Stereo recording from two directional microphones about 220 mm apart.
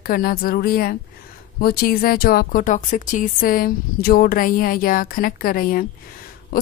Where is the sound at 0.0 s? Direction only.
40° left (ahead or behind).